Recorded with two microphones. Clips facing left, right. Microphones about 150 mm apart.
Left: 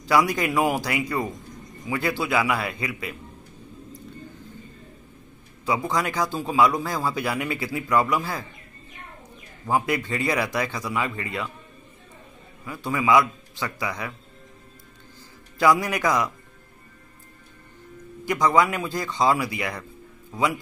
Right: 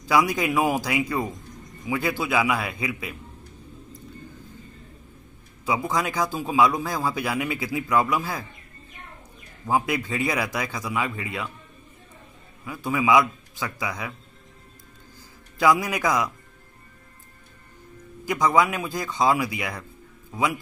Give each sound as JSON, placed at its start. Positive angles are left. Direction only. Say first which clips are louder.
{"t": 0.1, "sound": "a man's voice", "louder": "even", "side_deg": -10}
{"t": 5.7, "sound": "a man's voice", "louder": "even", "side_deg": -5}
{"t": 9.7, "sound": "a man's voice", "louder": "even", "side_deg": -10}
{"t": 12.6, "sound": "a man's voice", "louder": "even", "side_deg": -10}
{"t": 15.6, "sound": "a man's voice", "louder": "left 1 dB", "side_deg": -10}
{"t": 18.3, "sound": "a man's voice", "louder": "left 1 dB", "side_deg": -5}